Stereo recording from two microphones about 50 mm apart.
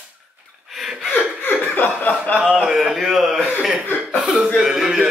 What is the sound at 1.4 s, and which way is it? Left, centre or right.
Chuckle, left.